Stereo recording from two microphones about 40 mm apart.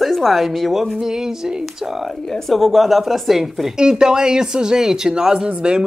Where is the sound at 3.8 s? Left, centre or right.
Centre.